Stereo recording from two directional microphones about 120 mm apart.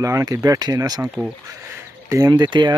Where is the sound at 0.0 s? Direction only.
25° right (ahead or behind).